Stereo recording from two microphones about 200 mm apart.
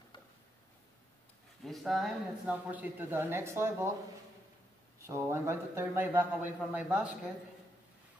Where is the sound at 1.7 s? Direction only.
Centre (ahead or behind).